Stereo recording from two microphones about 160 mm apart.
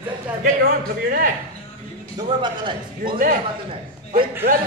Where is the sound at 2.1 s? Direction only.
30° right (ahead or behind).